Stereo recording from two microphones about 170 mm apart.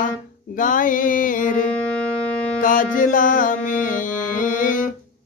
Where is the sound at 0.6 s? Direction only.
50° left (ahead or behind).